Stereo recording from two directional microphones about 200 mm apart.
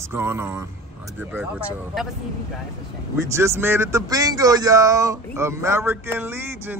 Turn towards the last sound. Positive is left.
turn(degrees=-10)  # may be behind; listen again after turning